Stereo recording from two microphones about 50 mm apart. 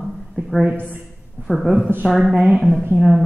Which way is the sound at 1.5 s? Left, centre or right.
Centre.